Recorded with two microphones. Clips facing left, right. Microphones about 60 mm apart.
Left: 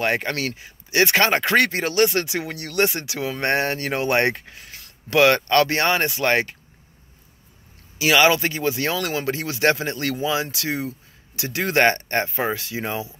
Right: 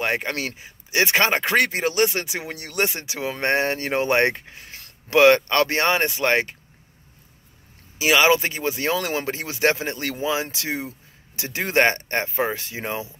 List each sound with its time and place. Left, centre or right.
0.0 s speech: centre
8.0 s speech: centre